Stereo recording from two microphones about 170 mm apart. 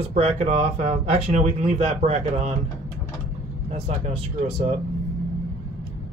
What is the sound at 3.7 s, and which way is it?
Speech, 40° right (ahead or behind).